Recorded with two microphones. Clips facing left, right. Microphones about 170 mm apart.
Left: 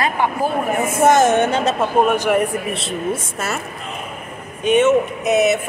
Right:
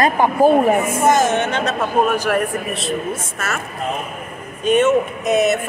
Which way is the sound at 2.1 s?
20° left (ahead or behind).